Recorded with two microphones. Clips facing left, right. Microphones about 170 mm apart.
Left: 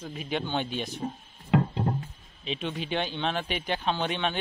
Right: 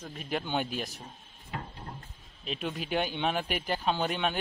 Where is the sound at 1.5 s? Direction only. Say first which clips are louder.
Left 15 dB; 90° left.